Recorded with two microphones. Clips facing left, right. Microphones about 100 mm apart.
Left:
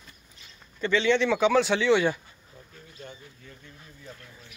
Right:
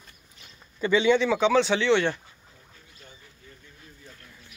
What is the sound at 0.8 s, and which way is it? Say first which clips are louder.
Speech: right 2 dB; 10° right (ahead or behind).